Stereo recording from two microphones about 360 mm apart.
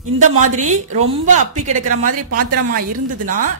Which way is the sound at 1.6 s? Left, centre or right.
Right.